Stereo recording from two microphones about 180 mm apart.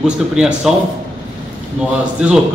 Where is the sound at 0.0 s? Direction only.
5° right (ahead or behind).